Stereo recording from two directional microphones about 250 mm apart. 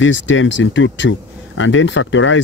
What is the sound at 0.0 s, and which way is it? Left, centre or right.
Speech, left.